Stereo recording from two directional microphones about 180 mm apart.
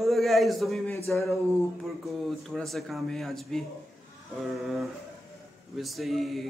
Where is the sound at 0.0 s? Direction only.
Centre (ahead or behind).